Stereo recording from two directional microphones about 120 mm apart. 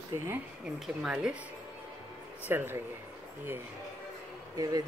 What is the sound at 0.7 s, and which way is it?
Speech, 5° right (ahead or behind).